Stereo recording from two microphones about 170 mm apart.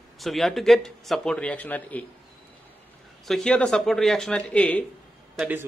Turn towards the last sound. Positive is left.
turn(degrees=-10)  # may be behind; listen again after turning